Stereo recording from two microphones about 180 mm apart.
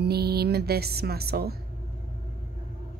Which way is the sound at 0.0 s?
60° right (ahead or behind).